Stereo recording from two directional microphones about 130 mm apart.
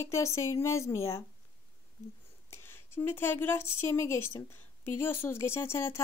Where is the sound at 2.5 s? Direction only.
15° left (ahead or behind).